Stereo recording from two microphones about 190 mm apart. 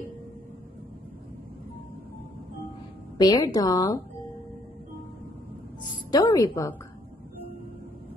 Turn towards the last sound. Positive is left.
turn(degrees=20)  # may be behind; listen again after turning